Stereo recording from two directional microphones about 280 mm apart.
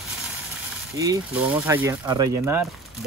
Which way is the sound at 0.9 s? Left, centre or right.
Centre.